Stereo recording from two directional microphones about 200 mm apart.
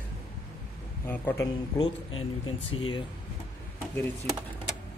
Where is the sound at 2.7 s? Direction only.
90° left.